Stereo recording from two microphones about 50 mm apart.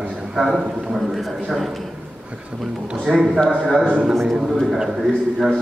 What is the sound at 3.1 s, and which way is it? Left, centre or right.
Speech, centre.